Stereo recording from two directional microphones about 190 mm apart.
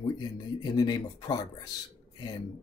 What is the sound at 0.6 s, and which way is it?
Speech, 20° left (ahead or behind).